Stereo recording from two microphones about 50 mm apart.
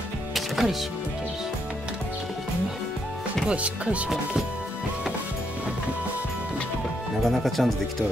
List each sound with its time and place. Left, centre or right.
0.3 s music: centre
3.4 s speech: right
7.2 s speech: centre